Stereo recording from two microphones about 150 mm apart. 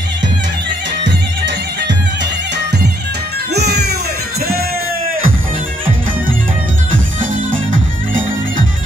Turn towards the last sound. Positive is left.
turn(degrees=-60)  # may be behind; listen again after turning